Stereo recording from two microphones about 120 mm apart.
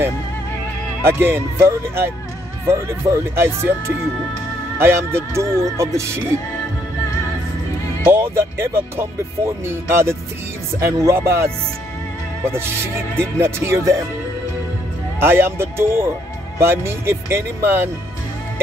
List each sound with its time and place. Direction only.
1.0 s speech: 20° right (ahead or behind)
8.1 s speech: 20° right (ahead or behind)
15.1 s speech: 20° right (ahead or behind)